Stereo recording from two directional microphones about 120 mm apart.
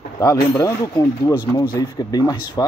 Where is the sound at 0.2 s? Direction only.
30° left (ahead or behind).